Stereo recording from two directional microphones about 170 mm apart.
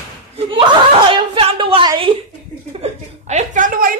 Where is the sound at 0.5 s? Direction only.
30° right (ahead or behind).